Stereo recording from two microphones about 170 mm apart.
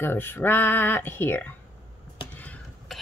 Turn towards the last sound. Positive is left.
turn(degrees=5)  # may be behind; listen again after turning